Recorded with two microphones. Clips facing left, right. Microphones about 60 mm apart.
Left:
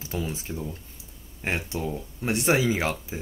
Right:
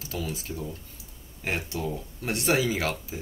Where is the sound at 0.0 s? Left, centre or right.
Left.